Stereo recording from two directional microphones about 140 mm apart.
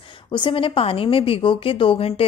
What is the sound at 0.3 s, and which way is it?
A woman's voice, 35° left (ahead or behind).